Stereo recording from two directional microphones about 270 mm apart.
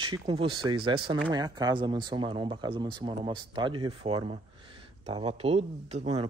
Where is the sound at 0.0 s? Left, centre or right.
Centre.